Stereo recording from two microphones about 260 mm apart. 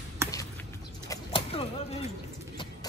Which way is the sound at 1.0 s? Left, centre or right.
Centre.